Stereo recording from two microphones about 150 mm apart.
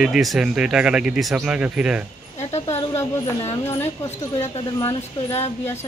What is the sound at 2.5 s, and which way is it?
Speech, 20° left (ahead or behind).